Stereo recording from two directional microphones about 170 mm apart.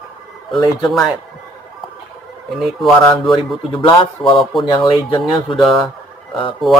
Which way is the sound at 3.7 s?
30° left (ahead or behind).